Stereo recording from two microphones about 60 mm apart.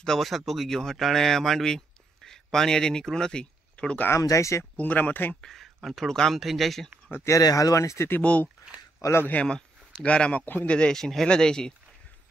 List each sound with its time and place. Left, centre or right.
0.0 s speech: centre
4.2 s speech: left
4.7 s speech: left
5.3 s speech: centre
7.2 s speech: left
8.2 s speech: left
9.5 s speech: centre
10.4 s speech: left
10.7 s speech: centre